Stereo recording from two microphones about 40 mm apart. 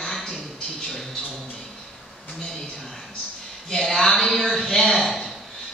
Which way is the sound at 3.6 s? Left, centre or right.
Centre.